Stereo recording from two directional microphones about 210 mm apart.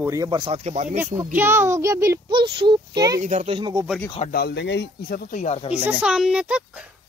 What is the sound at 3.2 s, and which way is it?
Speech, 30° right (ahead or behind).